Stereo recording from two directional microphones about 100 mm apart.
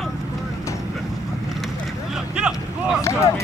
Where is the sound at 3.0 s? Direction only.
30° left (ahead or behind).